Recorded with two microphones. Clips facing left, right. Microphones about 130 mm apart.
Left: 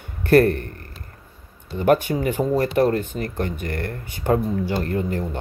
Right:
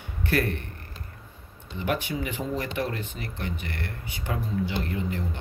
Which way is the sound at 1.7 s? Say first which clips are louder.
Left 11 dB; 45° left (ahead or behind).